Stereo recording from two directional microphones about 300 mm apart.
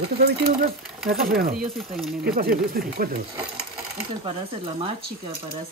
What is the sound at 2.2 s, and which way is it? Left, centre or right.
Speech, right.